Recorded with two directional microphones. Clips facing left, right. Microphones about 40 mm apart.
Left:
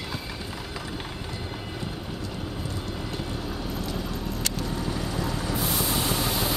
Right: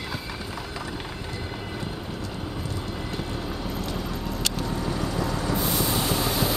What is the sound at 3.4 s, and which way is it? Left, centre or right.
Vehicle, centre.